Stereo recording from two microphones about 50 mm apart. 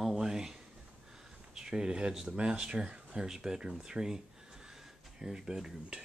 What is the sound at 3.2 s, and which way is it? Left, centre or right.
Speech, centre.